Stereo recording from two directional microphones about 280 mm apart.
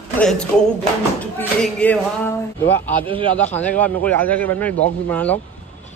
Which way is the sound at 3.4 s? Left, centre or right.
Centre.